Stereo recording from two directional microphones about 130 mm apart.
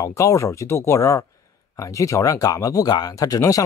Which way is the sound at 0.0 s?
25° left (ahead or behind).